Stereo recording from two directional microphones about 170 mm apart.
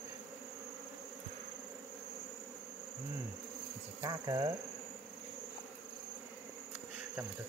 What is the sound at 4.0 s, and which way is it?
Speech, 20° right (ahead or behind).